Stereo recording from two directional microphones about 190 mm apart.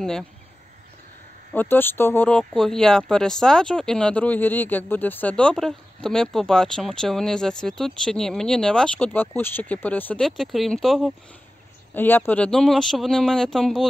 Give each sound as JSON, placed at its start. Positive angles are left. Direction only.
{"t": 1.5, "sound": "speech", "side_deg": 10}
{"t": 11.9, "sound": "speech", "side_deg": 10}